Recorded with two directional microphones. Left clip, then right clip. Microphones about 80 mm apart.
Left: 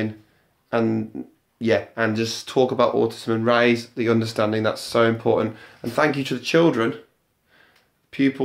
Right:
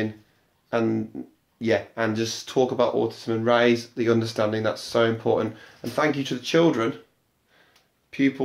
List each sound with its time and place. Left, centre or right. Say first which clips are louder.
0.7 s speech: left 2 dB; centre
2.6 s speech: left 3 dB; left
3.0 s speech: left 4 dB; left
3.3 s speech: left 1 dB; left
3.6 s speech: left 1 dB; centre
5.9 s speech: left 3 dB; left